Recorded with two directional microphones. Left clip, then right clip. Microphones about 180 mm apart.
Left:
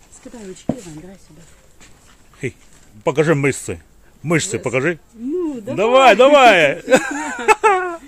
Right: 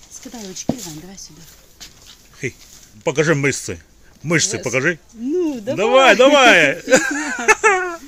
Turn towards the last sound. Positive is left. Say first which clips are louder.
# even
turn(degrees=10)  # may be behind; listen again after turning